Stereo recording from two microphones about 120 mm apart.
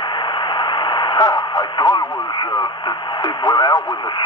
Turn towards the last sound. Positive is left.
turn(degrees=35)  # may be behind; listen again after turning